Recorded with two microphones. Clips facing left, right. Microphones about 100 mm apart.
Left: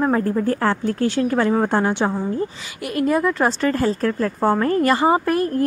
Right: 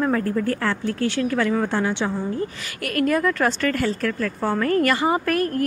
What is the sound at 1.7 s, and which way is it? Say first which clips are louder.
Speech: left 4 dB; 45° left (ahead or behind).